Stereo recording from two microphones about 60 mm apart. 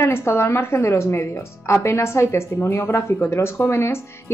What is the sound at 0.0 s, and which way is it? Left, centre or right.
A woman's voice, left.